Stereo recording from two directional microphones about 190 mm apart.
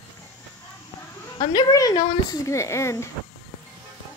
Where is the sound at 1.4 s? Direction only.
20° left (ahead or behind).